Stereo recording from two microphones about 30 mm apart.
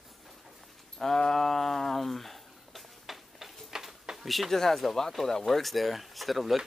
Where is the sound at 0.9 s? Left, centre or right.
Centre.